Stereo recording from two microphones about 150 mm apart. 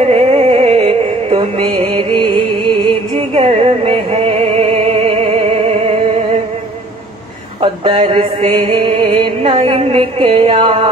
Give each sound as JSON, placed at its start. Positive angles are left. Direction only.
{"t": 0.0, "sound": "music", "side_deg": -45}
{"t": 7.6, "sound": "mantra", "side_deg": -35}